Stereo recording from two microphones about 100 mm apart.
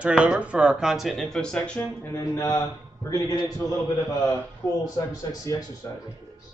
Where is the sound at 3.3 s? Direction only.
50° left (ahead or behind).